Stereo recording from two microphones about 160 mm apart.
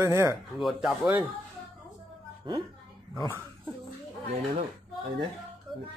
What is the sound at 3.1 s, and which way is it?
Speech, 20° left (ahead or behind).